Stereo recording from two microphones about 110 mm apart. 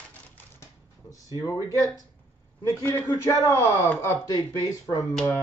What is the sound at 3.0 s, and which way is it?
Speech, 30° left (ahead or behind).